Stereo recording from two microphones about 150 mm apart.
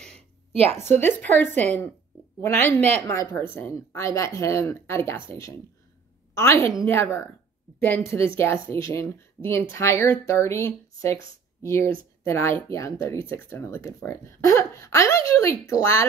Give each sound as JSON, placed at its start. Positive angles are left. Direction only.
{"t": 0.1, "sound": "a sound", "side_deg": -45}
{"t": 1.0, "sound": "speech", "side_deg": 15}
{"t": 6.3, "sound": "a woman's voice", "side_deg": 20}